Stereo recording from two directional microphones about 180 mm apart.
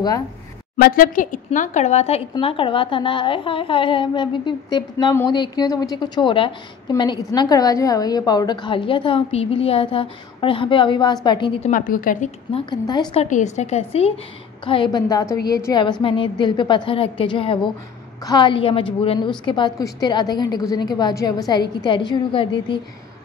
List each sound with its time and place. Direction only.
0.7 s a woman's voice: 55° left (ahead or behind); by 11.7 s 30° left (ahead or behind)
11.7 s speech: 50° left (ahead or behind)
12.5 s a woman's voice: 25° left (ahead or behind)
13.2 s a woman's voice: 40° left (ahead or behind)